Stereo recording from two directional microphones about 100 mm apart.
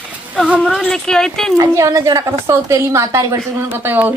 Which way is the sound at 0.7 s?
5° left (ahead or behind).